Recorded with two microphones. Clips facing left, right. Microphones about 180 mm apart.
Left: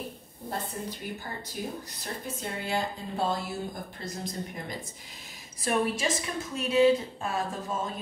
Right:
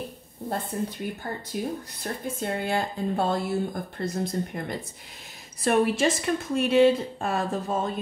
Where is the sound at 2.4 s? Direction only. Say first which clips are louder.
Right 4 dB; 60° right (ahead or behind).